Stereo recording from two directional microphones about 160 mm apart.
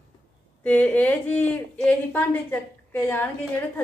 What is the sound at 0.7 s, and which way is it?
A woman's voice, 10° left (ahead or behind).